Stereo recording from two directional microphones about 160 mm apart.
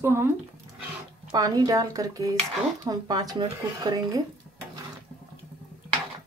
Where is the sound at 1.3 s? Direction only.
25° right (ahead or behind).